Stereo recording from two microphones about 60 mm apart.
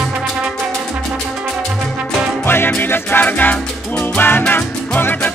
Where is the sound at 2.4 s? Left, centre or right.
Left.